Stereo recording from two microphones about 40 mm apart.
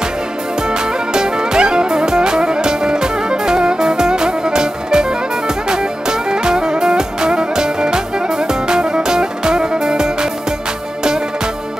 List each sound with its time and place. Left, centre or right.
1.1 s music: centre